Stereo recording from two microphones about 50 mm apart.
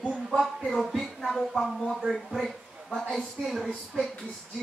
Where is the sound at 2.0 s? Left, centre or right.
Centre.